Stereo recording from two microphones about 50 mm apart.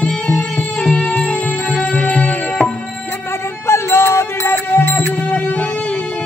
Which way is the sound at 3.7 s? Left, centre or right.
Left.